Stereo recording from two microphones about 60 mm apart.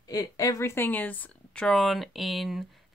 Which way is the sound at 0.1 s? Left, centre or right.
Left.